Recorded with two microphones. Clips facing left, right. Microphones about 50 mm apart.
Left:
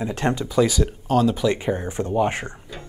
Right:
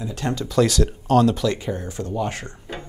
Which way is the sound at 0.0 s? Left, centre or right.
Left.